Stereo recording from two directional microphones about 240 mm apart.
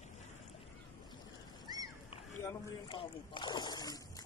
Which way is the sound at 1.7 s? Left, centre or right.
Centre.